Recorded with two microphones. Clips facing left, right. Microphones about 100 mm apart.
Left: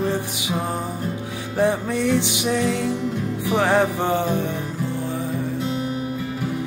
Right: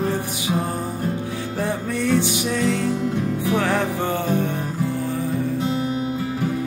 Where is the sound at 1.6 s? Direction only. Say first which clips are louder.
Left 5 dB; 20° left (ahead or behind).